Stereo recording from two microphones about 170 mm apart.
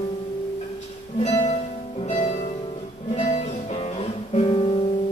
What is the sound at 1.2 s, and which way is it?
Music, 40° left (ahead or behind).